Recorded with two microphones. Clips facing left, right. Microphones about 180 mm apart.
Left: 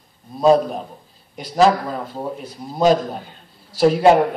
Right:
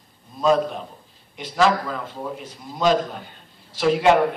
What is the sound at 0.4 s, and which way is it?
A man's voice, 40° left (ahead or behind).